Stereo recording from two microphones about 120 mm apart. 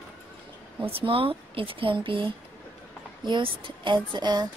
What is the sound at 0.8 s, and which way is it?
Speech, 50° right (ahead or behind).